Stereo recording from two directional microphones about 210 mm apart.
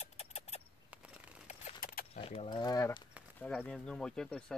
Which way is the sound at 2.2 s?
25° left (ahead or behind).